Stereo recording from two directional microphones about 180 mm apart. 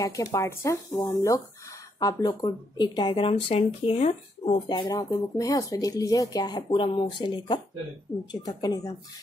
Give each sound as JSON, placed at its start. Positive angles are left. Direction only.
{"t": 0.0, "sound": "speech", "side_deg": 15}
{"t": 4.6, "sound": "speech", "side_deg": 25}